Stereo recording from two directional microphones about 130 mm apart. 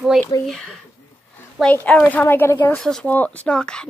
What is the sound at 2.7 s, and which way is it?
Speech, 5° left (ahead or behind).